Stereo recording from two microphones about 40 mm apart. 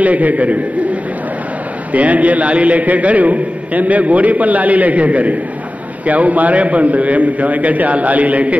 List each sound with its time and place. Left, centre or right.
0.0 s a man's voice: right
1.9 s a man's voice: right